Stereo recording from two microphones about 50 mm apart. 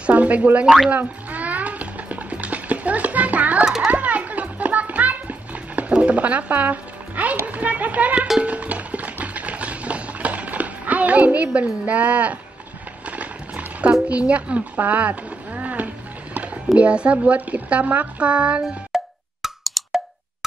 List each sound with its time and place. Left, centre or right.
0.0 s boing: right
0.8 s a sound: right
3.8 s music: right
7.4 s speech: right
8.4 s a sound: right
13.0 s horse: right
14.0 s speech: right
16.7 s a woman's voice: right
18.9 s wood block: centre
19.4 s plop: centre